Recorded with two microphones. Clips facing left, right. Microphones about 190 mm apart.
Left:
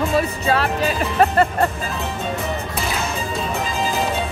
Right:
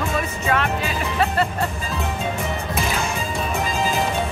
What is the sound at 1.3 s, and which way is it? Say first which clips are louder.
Music: left 5 dB; 50° left (ahead or behind).